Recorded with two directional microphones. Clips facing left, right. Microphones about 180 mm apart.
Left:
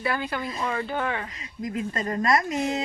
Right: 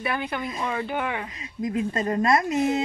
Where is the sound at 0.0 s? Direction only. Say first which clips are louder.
Even; 20° right (ahead or behind).